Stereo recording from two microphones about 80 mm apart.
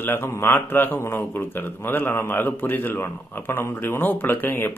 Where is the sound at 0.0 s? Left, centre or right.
Left.